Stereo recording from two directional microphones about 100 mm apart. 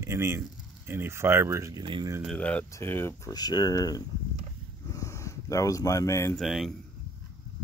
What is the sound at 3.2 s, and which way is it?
Speech, 40° left (ahead or behind).